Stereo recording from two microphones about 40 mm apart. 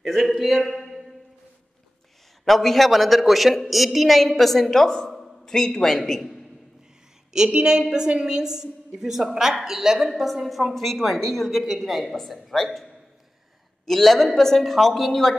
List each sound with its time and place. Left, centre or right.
0.0 s a sound: centre
2.4 s a woman's voice: centre
7.5 s a woman's voice: right; by 11.6 s centre
11.6 s a woman's voice: centre